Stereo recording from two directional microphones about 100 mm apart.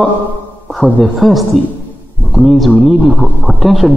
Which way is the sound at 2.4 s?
Centre (ahead or behind).